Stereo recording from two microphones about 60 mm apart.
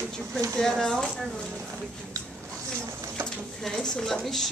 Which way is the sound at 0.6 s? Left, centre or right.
Centre.